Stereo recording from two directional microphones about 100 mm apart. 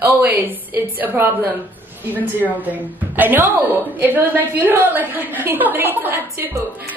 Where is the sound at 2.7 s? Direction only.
15° right (ahead or behind).